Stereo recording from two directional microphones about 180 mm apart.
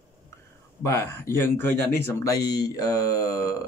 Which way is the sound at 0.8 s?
15° left (ahead or behind).